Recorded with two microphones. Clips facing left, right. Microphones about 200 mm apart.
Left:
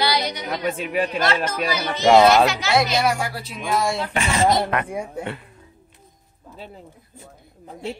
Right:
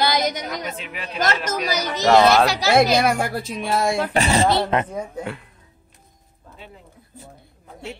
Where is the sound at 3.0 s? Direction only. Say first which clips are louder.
Right 2 dB; 55° right (ahead or behind).